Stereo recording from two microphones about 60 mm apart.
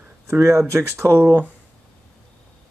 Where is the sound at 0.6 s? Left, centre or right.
Right.